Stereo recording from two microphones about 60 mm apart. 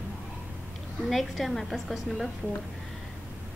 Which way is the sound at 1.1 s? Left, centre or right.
Centre.